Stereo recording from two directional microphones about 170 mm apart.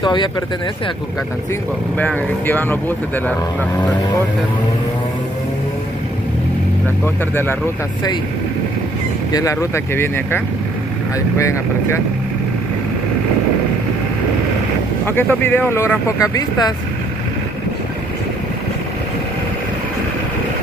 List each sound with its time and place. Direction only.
0.0 s speech: 25° left (ahead or behind)
2.0 s speech: 10° left (ahead or behind)
9.3 s speech: 20° left (ahead or behind)
15.0 s speech: 10° left (ahead or behind)